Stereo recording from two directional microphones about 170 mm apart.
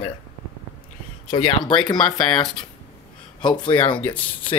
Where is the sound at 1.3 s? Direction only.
30° left (ahead or behind).